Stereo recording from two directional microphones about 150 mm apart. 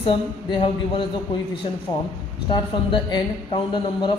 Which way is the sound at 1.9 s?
25° left (ahead or behind).